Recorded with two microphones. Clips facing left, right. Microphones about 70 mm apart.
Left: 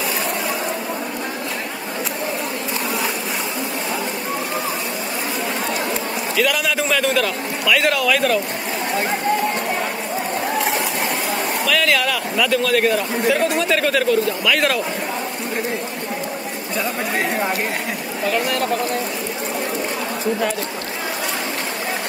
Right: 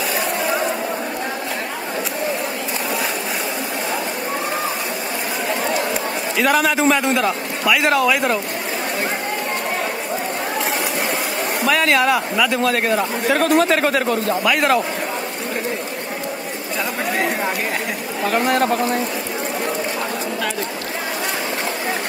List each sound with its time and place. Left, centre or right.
6.4 s a man's voice: right
11.6 s a man's voice: right
14.5 s speech: right
18.2 s a man's voice: right